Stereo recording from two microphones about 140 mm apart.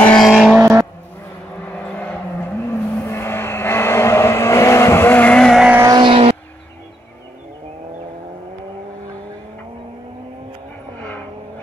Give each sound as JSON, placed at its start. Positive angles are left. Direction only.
{"t": 0.0, "sound": "vehicle", "side_deg": 5}
{"t": 0.3, "sound": "vehicle", "side_deg": -5}
{"t": 0.6, "sound": "vehicle", "side_deg": -20}
{"t": 2.0, "sound": "vehicle", "side_deg": 15}
{"t": 5.9, "sound": "vehicle", "side_deg": -35}
{"t": 11.0, "sound": "vehicle", "side_deg": 10}